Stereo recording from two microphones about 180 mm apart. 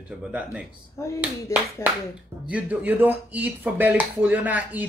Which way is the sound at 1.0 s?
15° left (ahead or behind).